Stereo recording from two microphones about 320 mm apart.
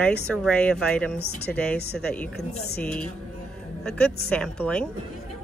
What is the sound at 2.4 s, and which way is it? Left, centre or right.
Speech, left.